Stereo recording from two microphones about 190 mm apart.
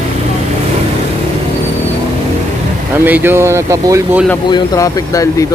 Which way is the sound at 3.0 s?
10° right (ahead or behind).